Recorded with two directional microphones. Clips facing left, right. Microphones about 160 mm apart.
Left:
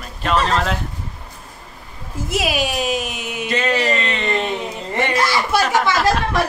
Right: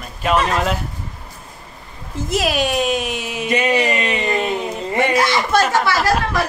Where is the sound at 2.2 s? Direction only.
5° left (ahead or behind).